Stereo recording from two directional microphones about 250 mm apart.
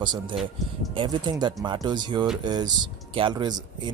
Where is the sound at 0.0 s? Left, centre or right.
Centre.